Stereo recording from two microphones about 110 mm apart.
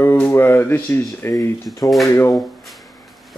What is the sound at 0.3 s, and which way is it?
Speech, 20° left (ahead or behind).